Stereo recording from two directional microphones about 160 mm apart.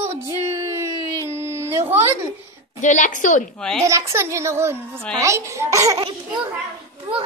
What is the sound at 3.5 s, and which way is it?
Speech, 5° left (ahead or behind).